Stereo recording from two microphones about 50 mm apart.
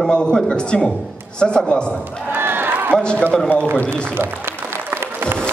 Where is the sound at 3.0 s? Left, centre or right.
Centre.